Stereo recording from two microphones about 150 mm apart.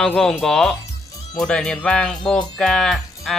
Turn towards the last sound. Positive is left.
turn(degrees=0)  # may be behind; listen again after turning